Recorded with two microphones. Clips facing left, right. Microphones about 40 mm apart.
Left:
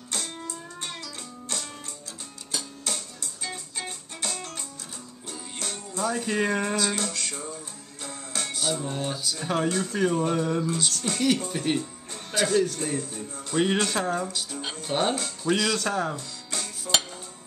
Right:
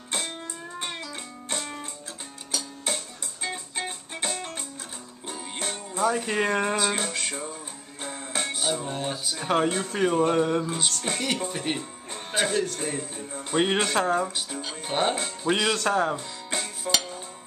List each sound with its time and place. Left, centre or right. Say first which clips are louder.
0.1 s music: right 2 dB; right
2.9 s music: right 5 dB; right
9.2 s speech: right 4 dB; right
12.1 s music: even; right
12.5 s speech: left 3 dB; centre
15.8 s music: right 3 dB; centre